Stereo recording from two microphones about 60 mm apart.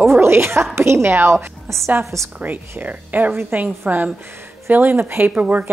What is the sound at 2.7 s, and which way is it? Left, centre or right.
A woman's voice, right.